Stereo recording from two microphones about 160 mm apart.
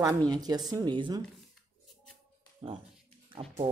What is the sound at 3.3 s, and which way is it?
Speech, 35° right (ahead or behind).